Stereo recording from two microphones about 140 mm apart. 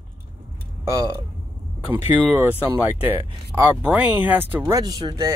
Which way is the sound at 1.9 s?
15° right (ahead or behind).